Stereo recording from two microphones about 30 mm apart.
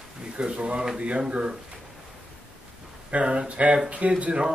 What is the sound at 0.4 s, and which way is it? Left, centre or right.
Speech, right.